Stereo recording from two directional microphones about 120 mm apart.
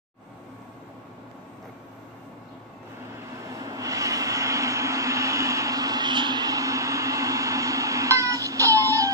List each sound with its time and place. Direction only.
3.4 s vehicle: 30° right (ahead or behind)